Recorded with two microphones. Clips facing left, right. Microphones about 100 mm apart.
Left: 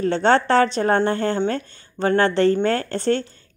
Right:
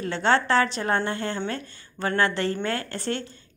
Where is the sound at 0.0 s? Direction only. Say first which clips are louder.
Left 5 dB; 35° left (ahead or behind).